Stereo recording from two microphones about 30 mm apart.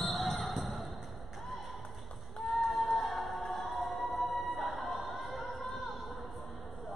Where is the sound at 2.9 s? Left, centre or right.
Centre.